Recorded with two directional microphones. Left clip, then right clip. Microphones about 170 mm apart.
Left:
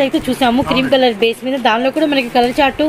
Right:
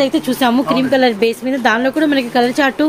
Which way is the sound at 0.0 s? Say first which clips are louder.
Even; 15° right (ahead or behind).